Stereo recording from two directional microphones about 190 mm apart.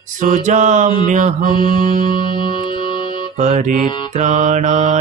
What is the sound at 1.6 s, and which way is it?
Music, 25° left (ahead or behind).